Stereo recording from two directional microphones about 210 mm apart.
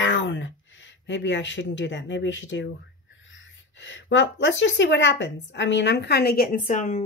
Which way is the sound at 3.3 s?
65° left (ahead or behind).